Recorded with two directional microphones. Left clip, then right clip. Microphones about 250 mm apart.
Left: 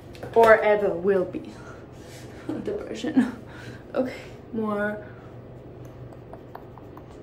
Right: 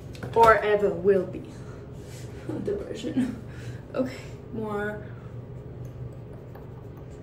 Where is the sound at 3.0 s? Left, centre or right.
Centre.